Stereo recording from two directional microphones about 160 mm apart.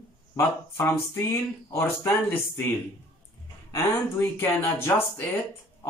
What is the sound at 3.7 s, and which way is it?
Speech, 15° left (ahead or behind).